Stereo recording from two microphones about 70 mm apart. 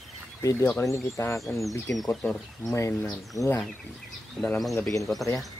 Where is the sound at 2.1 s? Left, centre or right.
Centre.